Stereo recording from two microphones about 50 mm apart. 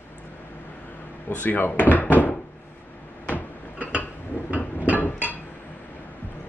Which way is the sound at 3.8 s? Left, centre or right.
Right.